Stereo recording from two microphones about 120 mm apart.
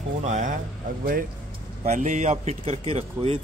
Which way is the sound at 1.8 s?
80° right.